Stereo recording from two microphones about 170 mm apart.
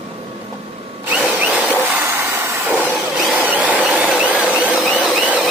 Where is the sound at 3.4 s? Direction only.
10° right (ahead or behind).